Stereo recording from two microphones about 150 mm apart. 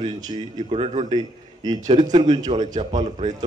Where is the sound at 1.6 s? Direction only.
30° right (ahead or behind).